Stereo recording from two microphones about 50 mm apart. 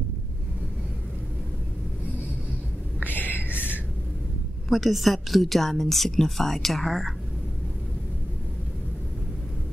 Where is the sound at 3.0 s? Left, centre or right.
Left.